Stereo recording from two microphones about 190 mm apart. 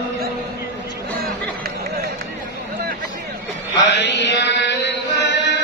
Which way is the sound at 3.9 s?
65° left (ahead or behind).